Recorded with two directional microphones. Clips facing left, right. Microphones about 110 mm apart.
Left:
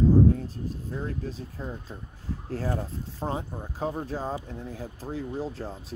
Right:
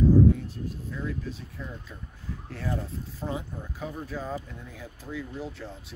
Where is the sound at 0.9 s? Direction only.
40° left (ahead or behind).